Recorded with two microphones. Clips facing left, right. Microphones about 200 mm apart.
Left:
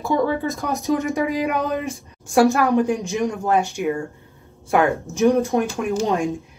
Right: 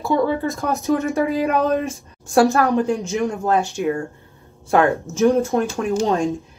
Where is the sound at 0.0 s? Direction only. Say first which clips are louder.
Right 1 dB; 15° left (ahead or behind).